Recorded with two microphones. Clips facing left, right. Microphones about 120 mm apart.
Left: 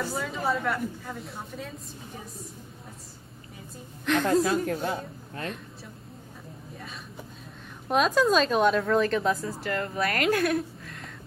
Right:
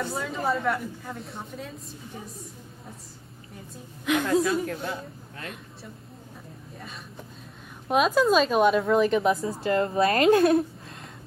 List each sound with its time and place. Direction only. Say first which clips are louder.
0.0 s a woman's voice: right 1 dB; centre (ahead or behind)
4.0 s a woman's voice: even; 5° right (ahead or behind)
4.3 s a woman's voice: left 1 dB; 30° left (ahead or behind)
7.9 s a woman's voice: right 1 dB; 5° right (ahead or behind)
9.6 s speech: right 6 dB; 25° right (ahead or behind)